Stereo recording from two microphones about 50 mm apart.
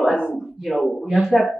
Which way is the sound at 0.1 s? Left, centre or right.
Centre.